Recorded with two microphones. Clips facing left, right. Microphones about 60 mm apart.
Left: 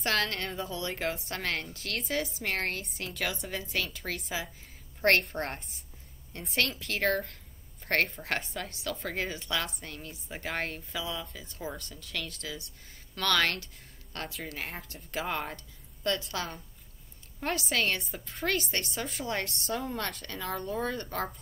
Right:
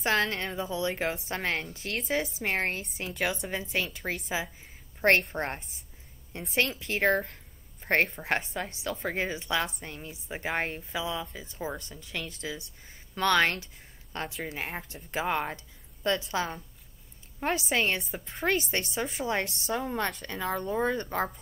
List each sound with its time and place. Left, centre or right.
0.0 s a woman's voice: centre
3.3 s speech: centre
3.6 s a woman's voice: right
7.8 s a sound: centre
8.2 s a woman's voice: right
11.1 s speech: centre
11.4 s a woman's voice: centre
17.4 s a woman's voice: centre